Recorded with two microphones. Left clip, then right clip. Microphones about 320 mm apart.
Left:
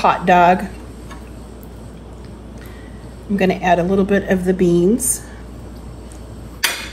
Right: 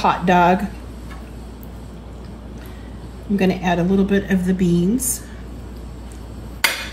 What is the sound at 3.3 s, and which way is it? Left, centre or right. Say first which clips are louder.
A woman's voice: left 4 dB; left.